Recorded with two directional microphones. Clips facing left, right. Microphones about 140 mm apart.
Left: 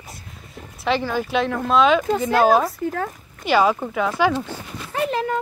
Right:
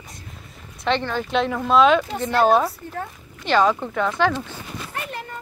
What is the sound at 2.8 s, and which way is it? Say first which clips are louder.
Speech: left 7 dB; 90° left.